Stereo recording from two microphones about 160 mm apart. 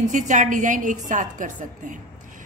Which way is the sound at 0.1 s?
50° right (ahead or behind).